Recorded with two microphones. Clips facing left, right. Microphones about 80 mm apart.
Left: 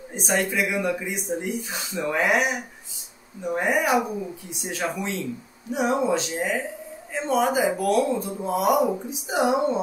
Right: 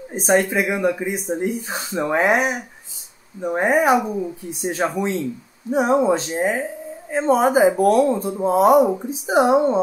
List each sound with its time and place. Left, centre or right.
0.1 s speech: right